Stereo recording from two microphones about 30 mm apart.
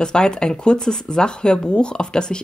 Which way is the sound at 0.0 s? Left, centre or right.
Left.